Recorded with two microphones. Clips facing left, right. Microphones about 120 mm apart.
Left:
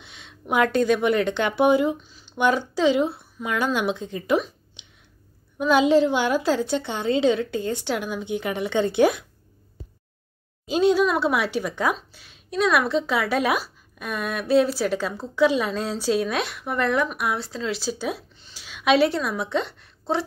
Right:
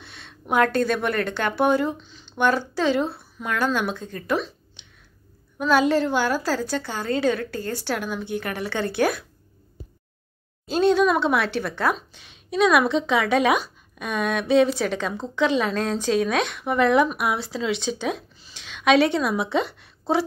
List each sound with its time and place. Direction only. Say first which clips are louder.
0.0 s a woman's voice: even; 15° left (ahead or behind)
4.3 s a sound: left 3 dB; 15° left (ahead or behind)
5.6 s a woman's voice: left 2 dB; 15° left (ahead or behind)
10.7 s a woman's voice: right 1 dB; 10° left (ahead or behind)